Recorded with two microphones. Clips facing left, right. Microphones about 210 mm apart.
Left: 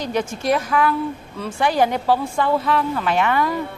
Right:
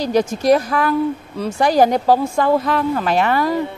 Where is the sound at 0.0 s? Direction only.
35° right (ahead or behind).